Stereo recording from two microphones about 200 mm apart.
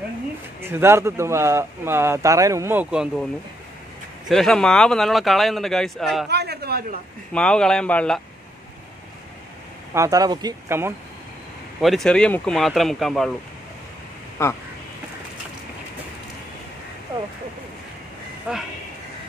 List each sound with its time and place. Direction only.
0.6 s speech: 10° right (ahead or behind)
4.3 s speech: centre (ahead or behind)
6.2 s speech: 55° right (ahead or behind)
7.3 s speech: 5° left (ahead or behind)
9.9 s speech: 15° right (ahead or behind)
11.8 s speech: centre (ahead or behind)
14.4 s speech: 15° left (ahead or behind)
18.5 s speech: 5° right (ahead or behind)